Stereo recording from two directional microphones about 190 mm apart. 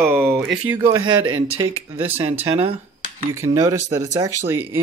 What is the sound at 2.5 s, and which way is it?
Speech, 30° right (ahead or behind).